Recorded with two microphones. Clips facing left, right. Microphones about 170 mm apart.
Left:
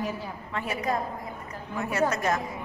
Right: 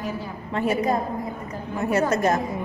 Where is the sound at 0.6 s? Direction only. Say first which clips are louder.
Right 7 dB; 30° right (ahead or behind).